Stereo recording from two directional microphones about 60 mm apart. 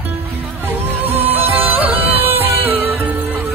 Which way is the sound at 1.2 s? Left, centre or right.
Right.